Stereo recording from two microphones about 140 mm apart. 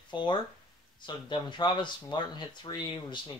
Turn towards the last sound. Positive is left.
turn(degrees=35)  # may be behind; listen again after turning